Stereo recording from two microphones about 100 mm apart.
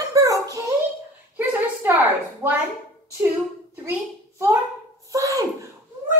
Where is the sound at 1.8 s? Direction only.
20° right (ahead or behind).